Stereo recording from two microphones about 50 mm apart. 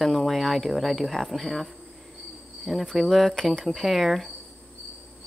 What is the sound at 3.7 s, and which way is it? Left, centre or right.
Speech, centre.